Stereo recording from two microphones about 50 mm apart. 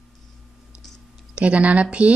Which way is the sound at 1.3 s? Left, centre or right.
Right.